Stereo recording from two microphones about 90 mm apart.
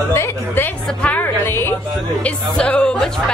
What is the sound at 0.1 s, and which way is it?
Speech, 25° left (ahead or behind).